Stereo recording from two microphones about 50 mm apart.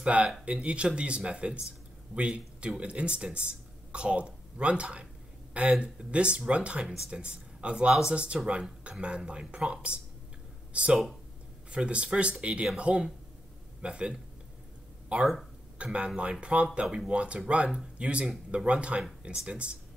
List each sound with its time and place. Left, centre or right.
0.0 s speech: right
16.8 s speech: centre
17.1 s speech: right